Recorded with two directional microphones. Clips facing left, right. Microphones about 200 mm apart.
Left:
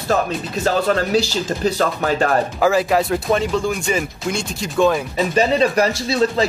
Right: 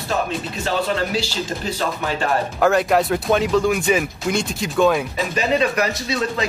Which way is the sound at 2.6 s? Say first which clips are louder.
Right 1 dB; centre (ahead or behind).